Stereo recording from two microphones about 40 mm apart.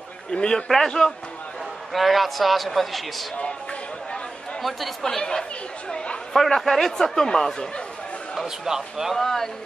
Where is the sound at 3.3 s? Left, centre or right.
Left.